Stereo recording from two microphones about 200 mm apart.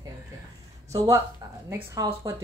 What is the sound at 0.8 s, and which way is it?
Speech, 15° right (ahead or behind).